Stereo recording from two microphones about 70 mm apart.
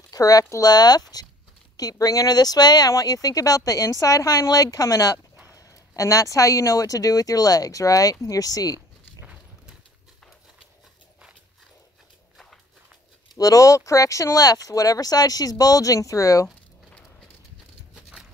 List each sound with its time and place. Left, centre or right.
0.1 s speech: left
1.8 s speech: left
2.9 s speech: left
9.2 s clip-clop: centre
13.4 s speech: left
14.4 s speech: left